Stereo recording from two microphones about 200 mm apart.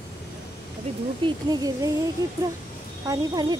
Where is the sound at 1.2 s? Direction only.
20° right (ahead or behind).